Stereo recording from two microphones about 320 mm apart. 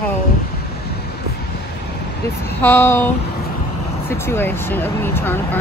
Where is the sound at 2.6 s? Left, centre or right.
Centre.